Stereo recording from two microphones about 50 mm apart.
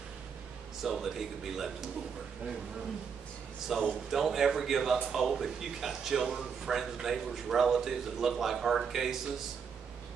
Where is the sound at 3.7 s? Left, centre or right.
Centre.